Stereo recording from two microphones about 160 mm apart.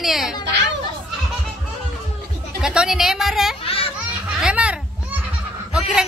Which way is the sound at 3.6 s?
35° left (ahead or behind).